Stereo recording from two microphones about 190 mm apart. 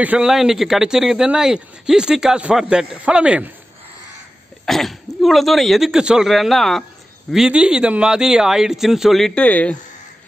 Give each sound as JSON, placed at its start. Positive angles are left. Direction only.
{"t": 0.0, "sound": "speech", "side_deg": -5}
{"t": 4.6, "sound": "speech", "side_deg": 0}